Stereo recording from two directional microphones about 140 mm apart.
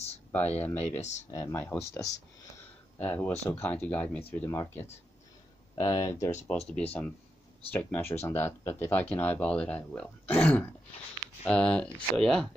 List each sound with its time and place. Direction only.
0.3 s speech: 10° left (ahead or behind)
6.7 s speech: 10° left (ahead or behind)